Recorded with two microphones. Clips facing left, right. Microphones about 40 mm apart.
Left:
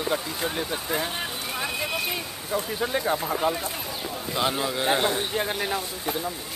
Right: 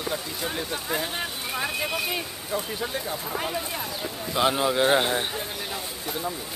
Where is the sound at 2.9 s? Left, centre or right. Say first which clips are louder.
Left 6 dB; left.